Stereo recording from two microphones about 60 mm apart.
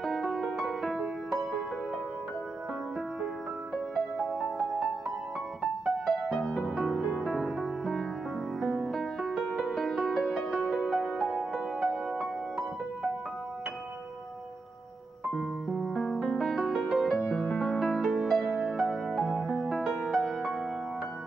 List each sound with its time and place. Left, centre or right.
0.0 s music: centre
3.7 s music: centre
15.3 s music: centre
16.3 s music: centre